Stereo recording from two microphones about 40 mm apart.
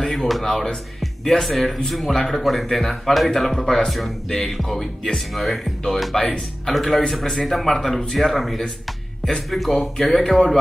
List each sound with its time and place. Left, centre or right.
0.0 s music: centre
1.2 s a man's voice: centre
3.6 s music: centre
5.3 s a man's voice: centre